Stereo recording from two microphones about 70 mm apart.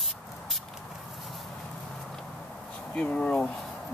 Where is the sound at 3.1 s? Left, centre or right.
Centre.